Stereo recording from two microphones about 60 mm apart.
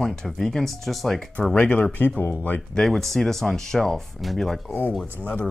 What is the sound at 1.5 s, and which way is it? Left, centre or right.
Speech, left.